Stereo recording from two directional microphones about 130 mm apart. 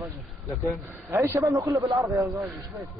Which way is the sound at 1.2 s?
25° right (ahead or behind).